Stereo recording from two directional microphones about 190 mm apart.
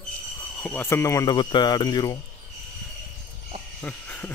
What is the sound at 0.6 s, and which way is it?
Speech, 10° left (ahead or behind).